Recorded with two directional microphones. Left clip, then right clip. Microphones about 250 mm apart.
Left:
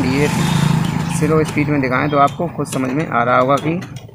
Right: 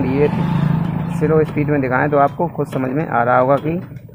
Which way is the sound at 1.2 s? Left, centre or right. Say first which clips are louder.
Right 1 dB; centre.